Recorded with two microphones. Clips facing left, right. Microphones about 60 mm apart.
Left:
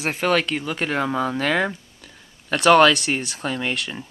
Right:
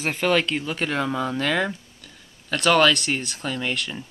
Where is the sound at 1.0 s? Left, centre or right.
Left.